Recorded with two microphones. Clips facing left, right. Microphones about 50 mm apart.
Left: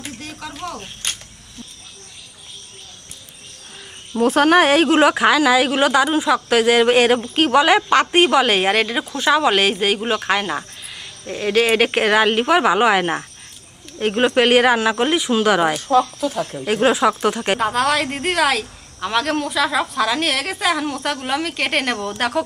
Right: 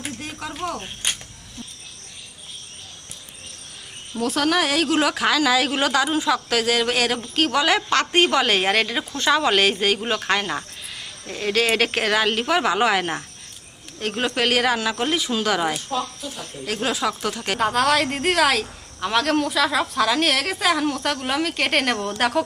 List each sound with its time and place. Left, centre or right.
0.0 s a sound: centre
4.1 s a woman's voice: left
16.3 s speech: left
16.6 s speech: left
17.6 s speech: centre